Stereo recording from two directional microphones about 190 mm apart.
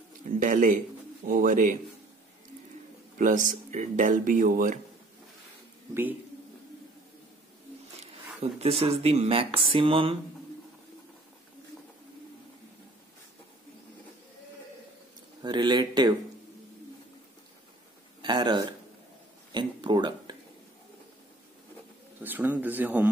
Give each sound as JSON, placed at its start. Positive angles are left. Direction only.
{"t": 0.4, "sound": "speech", "side_deg": -40}
{"t": 3.2, "sound": "speech", "side_deg": -45}
{"t": 8.4, "sound": "speech", "side_deg": -30}
{"t": 15.4, "sound": "speech", "side_deg": -25}
{"t": 18.2, "sound": "speech", "side_deg": -25}
{"t": 22.2, "sound": "speech", "side_deg": -10}